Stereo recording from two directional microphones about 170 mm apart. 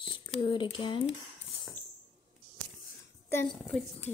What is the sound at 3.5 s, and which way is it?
Speech, 5° left (ahead or behind).